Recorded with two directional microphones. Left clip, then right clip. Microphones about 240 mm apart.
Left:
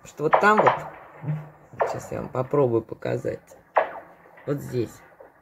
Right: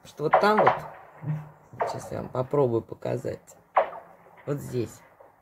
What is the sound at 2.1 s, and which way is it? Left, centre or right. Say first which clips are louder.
Speech: left 2 dB; centre.